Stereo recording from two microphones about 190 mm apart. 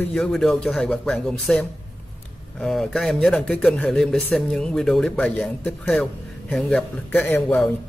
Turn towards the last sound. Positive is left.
turn(degrees=10)  # may be behind; listen again after turning